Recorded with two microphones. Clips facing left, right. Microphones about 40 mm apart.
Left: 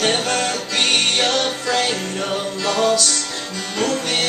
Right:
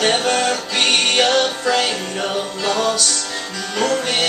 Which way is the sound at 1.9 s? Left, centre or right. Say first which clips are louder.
Even; right.